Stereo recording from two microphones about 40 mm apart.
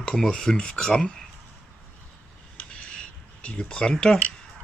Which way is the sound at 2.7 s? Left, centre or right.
Left.